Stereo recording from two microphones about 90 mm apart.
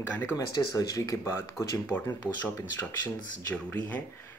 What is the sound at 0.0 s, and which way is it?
Speech, 20° left (ahead or behind).